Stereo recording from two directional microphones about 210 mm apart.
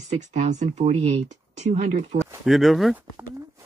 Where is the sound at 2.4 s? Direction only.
Centre (ahead or behind).